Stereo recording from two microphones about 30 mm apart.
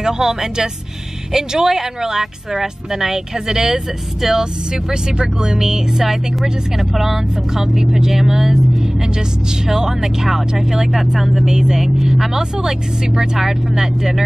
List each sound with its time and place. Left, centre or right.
0.0 s speech: centre
11.5 s speech: centre
12.4 s speech: right